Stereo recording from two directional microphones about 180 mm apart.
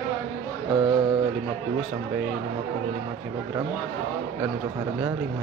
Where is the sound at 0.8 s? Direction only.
20° right (ahead or behind).